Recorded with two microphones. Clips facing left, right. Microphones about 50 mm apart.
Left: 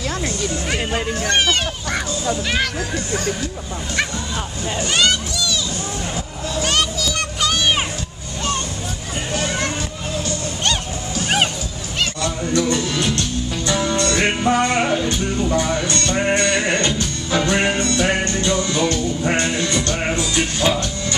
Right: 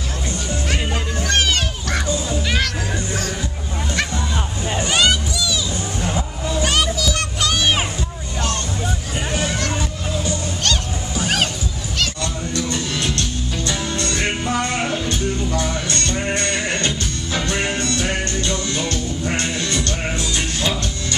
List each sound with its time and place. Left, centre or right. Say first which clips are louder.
0.7 s music: left 2 dB; centre
4.8 s music: even; centre
12.0 s honk: left 2 dB; centre
13.7 s music: left 6 dB; centre
16.2 s music: left 7 dB; centre